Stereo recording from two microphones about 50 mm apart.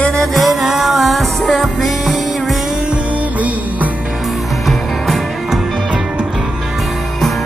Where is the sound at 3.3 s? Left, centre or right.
Right.